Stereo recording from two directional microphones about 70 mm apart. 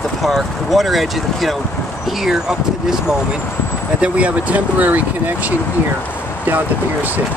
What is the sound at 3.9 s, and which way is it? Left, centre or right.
Speech, centre.